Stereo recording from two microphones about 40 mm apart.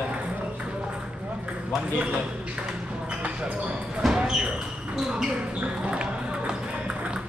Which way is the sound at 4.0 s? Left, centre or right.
Centre.